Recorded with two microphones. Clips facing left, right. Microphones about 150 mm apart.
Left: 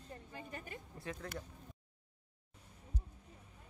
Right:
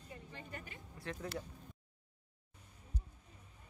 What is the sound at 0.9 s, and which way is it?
Speech, 40° left (ahead or behind).